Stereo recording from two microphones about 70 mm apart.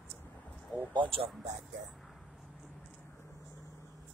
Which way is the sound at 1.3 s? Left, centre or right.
Centre.